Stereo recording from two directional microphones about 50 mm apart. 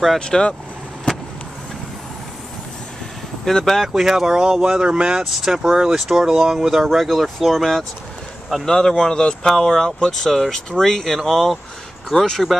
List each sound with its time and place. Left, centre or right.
0.2 s speech: centre
3.4 s speech: centre
3.9 s speech: centre
5.2 s speech: centre